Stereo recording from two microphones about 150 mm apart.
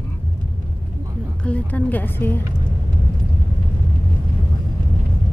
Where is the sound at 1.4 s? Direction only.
10° left (ahead or behind).